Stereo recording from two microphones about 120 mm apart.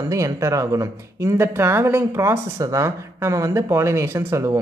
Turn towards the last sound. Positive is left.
turn(degrees=-25)  # may be behind; listen again after turning